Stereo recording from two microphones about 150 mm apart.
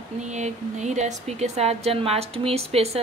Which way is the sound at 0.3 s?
50° right (ahead or behind).